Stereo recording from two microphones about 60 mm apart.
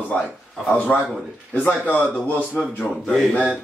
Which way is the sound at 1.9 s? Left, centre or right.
Left.